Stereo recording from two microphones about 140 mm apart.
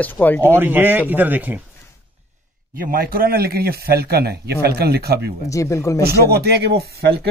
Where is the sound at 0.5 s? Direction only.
15° right (ahead or behind).